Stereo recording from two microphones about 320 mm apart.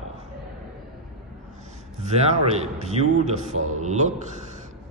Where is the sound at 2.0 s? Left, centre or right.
Centre.